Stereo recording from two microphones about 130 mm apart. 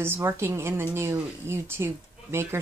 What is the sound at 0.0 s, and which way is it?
A woman's voice, 15° right (ahead or behind).